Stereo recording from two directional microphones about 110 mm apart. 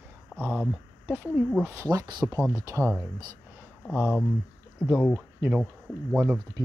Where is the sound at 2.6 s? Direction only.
25° right (ahead or behind).